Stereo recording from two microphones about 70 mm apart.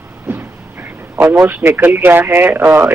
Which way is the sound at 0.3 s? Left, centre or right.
Right.